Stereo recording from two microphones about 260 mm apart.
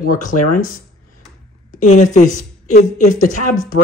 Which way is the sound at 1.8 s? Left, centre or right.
Left.